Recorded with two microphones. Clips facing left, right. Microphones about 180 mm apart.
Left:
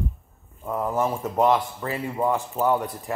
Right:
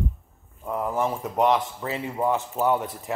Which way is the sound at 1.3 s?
15° right (ahead or behind).